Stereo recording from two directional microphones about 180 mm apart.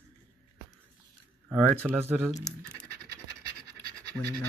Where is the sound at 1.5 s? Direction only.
5° left (ahead or behind).